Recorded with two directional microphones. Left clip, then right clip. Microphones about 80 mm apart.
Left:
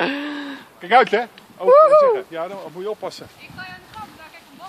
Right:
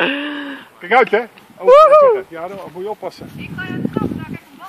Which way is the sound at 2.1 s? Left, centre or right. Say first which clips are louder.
Right 3 dB; left.